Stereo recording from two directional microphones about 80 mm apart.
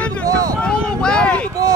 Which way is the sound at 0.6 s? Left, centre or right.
Centre.